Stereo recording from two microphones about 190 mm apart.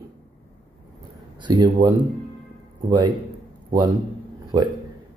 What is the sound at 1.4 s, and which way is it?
Speech, 25° right (ahead or behind).